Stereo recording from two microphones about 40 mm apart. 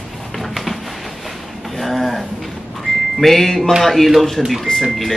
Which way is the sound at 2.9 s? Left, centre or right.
Centre.